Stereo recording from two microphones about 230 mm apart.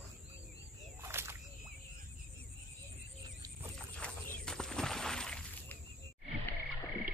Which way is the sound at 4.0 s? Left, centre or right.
Centre.